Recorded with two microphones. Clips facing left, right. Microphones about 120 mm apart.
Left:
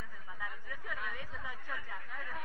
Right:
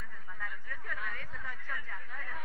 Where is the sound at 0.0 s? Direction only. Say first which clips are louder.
Even; 10° left (ahead or behind).